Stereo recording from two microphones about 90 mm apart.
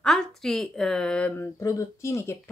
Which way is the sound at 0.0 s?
5° left (ahead or behind).